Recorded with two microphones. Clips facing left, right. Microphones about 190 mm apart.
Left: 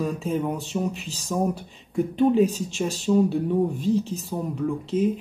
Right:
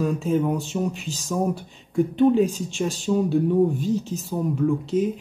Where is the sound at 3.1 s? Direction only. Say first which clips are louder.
Even; centre (ahead or behind).